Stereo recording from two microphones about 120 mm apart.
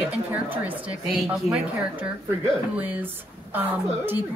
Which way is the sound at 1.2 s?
Centre (ahead or behind).